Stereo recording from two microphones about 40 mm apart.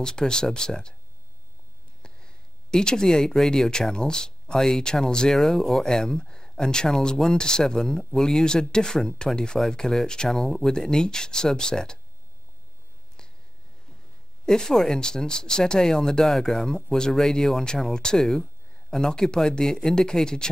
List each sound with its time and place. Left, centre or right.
0.0 s speech: centre
2.0 s speech: centre
14.4 s speech: centre
16.3 s speech: centre
16.5 s speech: centre